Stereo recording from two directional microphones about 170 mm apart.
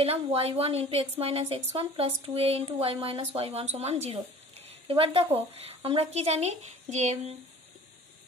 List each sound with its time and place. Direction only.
0.0 s speech: 35° right (ahead or behind)